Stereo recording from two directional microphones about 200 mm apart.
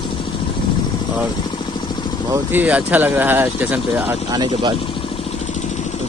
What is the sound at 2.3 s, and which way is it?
Speech, 10° right (ahead or behind).